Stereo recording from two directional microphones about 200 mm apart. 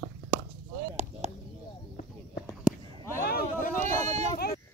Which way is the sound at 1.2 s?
35° right (ahead or behind).